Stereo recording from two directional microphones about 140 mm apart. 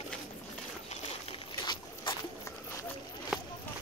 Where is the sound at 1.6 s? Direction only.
30° left (ahead or behind).